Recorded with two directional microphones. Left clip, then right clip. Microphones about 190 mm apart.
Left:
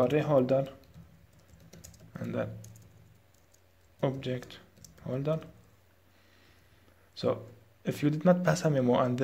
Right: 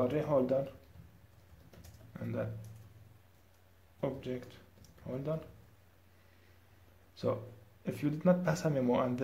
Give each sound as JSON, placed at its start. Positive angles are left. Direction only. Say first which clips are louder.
{"t": 0.0, "sound": "speech", "louder": "left 5 dB", "side_deg": 20}
{"t": 2.1, "sound": "speech", "louder": "left 4 dB", "side_deg": 20}
{"t": 4.0, "sound": "speech", "louder": "left 5 dB", "side_deg": 25}
{"t": 7.2, "sound": "speech", "louder": "left 4 dB", "side_deg": 20}